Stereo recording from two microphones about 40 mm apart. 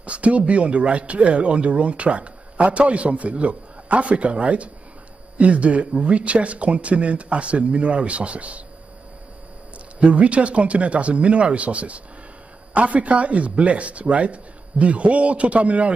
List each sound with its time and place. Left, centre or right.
0.0 s speech: right
9.9 s speech: right